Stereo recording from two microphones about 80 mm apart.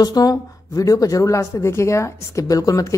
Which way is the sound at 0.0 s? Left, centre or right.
Left.